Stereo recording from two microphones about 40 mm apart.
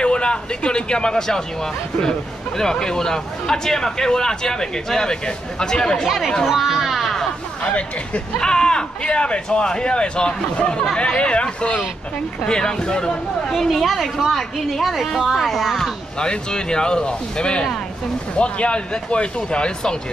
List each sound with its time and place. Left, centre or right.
0.0 s speech: left
6.0 s a woman's voice: centre
6.4 s music: centre
8.4 s speech: centre
13.5 s a woman's voice: centre
16.2 s speech: left